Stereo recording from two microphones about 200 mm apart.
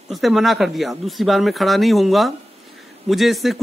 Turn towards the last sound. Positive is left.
turn(degrees=0)  # may be behind; listen again after turning